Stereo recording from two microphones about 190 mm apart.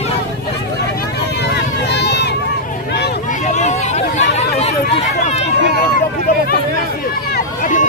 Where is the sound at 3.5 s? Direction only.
40° left (ahead or behind).